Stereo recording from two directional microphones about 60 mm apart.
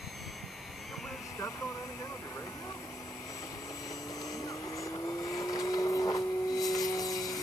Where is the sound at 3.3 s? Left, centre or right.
Left.